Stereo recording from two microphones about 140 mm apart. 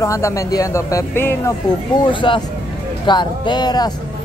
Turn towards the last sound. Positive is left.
turn(degrees=30)  # may be behind; listen again after turning